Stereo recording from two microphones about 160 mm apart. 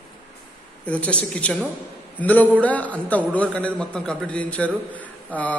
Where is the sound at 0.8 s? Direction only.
10° left (ahead or behind).